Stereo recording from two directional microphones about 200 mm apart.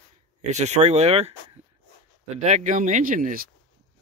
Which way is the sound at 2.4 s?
35° right (ahead or behind).